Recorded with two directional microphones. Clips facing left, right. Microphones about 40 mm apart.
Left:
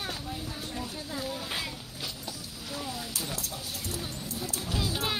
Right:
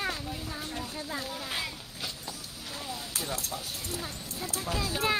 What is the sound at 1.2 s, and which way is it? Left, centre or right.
Speech, centre.